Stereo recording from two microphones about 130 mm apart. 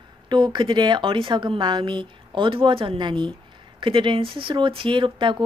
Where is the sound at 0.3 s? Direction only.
35° right (ahead or behind).